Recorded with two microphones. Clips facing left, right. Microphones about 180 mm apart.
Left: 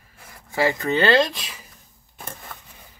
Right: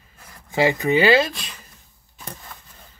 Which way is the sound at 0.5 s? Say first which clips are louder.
Right 3 dB; 15° right (ahead or behind).